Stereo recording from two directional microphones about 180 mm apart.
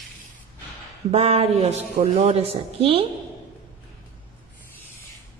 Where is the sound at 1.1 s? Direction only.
35° right (ahead or behind).